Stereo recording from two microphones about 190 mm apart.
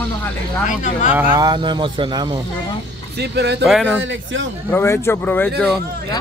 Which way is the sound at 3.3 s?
60° right (ahead or behind).